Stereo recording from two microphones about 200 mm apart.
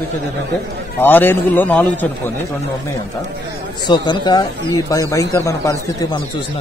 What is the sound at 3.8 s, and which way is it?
A man's voice, 25° left (ahead or behind).